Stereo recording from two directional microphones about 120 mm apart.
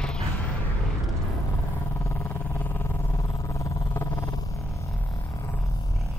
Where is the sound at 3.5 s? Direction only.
25° left (ahead or behind).